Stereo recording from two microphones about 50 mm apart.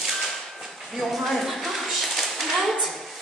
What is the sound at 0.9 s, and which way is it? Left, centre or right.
Speech, centre.